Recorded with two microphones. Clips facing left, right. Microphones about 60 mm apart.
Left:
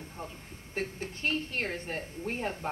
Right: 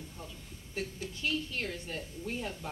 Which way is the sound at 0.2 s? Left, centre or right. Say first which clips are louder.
Left 7 dB; left.